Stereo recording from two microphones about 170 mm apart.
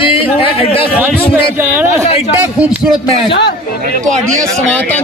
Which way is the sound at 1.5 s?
15° right (ahead or behind).